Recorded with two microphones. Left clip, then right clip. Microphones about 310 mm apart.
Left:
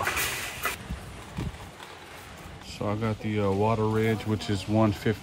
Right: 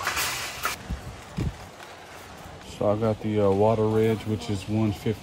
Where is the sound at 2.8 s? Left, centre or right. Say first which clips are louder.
Right 7 dB; centre.